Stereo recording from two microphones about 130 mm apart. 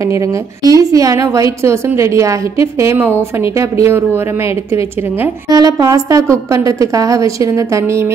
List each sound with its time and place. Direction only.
0.0 s a woman's voice: 25° right (ahead or behind)
5.5 s a woman's voice: 30° right (ahead or behind)